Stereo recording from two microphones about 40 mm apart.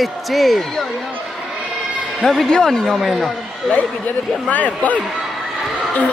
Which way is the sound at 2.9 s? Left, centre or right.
Centre.